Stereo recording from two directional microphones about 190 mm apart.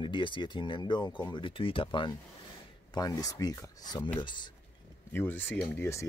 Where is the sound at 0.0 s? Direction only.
25° left (ahead or behind).